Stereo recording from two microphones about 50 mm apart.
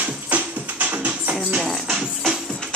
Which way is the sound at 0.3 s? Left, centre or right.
Right.